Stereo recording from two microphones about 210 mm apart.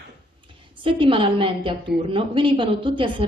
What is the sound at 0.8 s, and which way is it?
A woman's voice, 25° right (ahead or behind).